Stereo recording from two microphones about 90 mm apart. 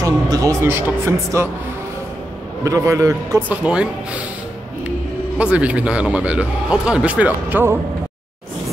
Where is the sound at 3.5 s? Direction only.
10° right (ahead or behind).